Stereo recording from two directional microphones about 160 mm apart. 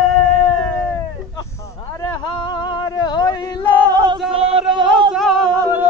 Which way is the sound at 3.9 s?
25° right (ahead or behind).